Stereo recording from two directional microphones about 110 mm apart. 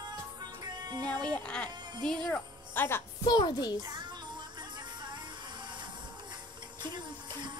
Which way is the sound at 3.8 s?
40° right (ahead or behind).